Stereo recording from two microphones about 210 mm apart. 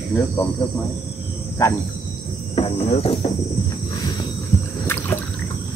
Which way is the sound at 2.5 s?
25° left (ahead or behind).